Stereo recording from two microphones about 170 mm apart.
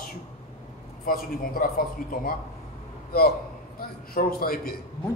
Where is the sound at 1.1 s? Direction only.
60° left (ahead or behind).